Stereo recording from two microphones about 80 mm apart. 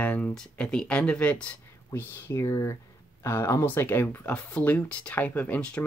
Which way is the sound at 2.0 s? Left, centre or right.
Left.